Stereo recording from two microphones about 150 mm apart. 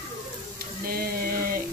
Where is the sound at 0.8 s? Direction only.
85° right.